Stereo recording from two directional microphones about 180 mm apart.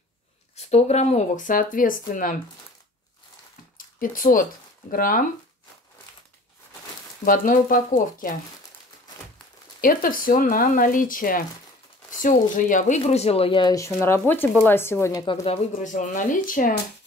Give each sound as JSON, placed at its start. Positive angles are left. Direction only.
{"t": 0.6, "sound": "speech", "side_deg": 35}
{"t": 3.7, "sound": "a sound", "side_deg": 50}
{"t": 4.9, "sound": "speech", "side_deg": 50}
{"t": 7.2, "sound": "speech", "side_deg": 50}
{"t": 9.8, "sound": "speech", "side_deg": 50}
{"t": 15.2, "sound": "speech", "side_deg": 30}